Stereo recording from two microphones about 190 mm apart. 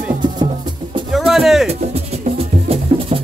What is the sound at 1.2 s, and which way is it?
Music, centre (ahead or behind).